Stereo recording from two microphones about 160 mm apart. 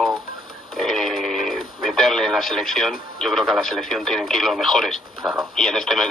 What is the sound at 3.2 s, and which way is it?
Speech, centre (ahead or behind).